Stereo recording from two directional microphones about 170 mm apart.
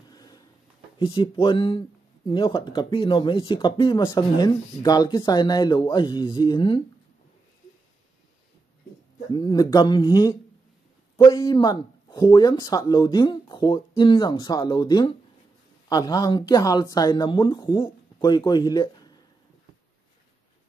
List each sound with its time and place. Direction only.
0.1 s a sound: 25° left (ahead or behind)
0.9 s speech: 30° left (ahead or behind)
9.3 s speech: 25° left (ahead or behind)